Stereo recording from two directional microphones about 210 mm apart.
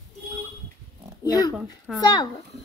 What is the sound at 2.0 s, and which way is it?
Speech, 20° left (ahead or behind).